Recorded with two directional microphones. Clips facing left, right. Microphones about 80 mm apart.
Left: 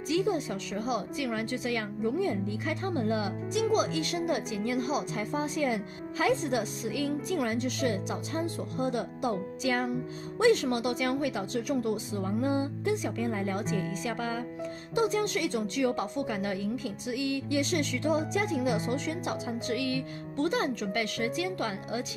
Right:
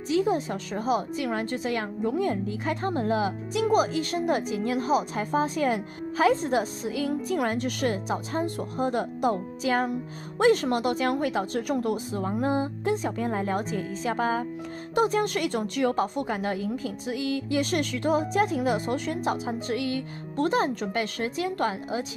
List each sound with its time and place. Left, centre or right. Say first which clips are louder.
0.1 s a woman's voice: right 4 dB; right
2.0 s a woman's voice: right 3 dB; right
2.6 s a woman's voice: right 4 dB; right
7.3 s speech: right 2 dB; right
8.1 s a woman's voice: right 4 dB; right
16.3 s a woman's voice: right 3 dB; right